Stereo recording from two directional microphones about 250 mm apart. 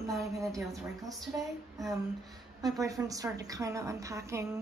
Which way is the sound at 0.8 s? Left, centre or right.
Centre.